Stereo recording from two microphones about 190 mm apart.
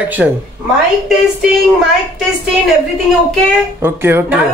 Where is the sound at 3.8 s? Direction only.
10° right (ahead or behind).